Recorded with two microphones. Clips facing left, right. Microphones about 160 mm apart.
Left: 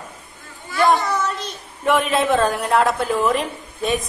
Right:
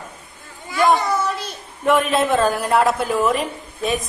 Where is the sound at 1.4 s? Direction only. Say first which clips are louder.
Right 1 dB; centre (ahead or behind).